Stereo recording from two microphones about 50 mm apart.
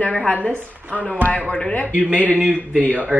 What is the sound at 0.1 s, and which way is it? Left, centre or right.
Speech, left.